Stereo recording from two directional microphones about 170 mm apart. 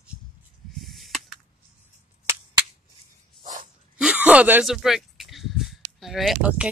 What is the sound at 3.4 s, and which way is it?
Dog, 50° right (ahead or behind).